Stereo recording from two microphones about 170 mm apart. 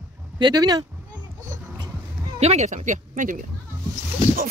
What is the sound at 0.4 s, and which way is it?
Speech, 25° right (ahead or behind).